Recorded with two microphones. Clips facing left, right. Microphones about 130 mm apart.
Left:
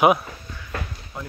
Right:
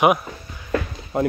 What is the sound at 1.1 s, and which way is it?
Speech, 55° right (ahead or behind).